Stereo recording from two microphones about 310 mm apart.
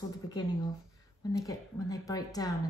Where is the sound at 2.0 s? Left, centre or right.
Centre.